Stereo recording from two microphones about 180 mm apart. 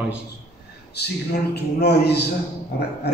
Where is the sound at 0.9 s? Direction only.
65° left (ahead or behind).